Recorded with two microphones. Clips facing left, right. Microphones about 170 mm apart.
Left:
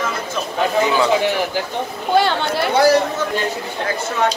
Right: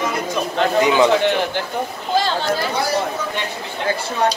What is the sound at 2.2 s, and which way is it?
Speech, 65° left (ahead or behind).